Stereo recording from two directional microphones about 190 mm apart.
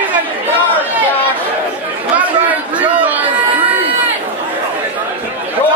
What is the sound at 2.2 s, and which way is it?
Chatter, 10° right (ahead or behind).